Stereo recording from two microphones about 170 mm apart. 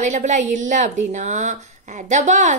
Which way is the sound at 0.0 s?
45° right (ahead or behind).